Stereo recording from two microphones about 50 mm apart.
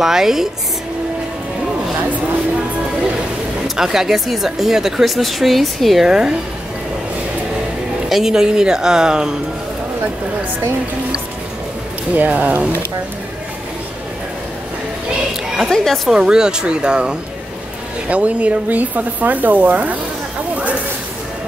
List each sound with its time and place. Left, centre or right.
0.0 s speech: centre
3.6 s speech: centre
6.0 s speech: centre
8.1 s speech: centre
12.2 s speech: right
15.7 s speech: centre
16.1 s speech: centre; by 20.0 s right